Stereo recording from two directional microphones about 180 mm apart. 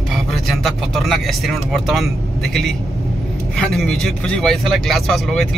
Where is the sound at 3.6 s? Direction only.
5° left (ahead or behind).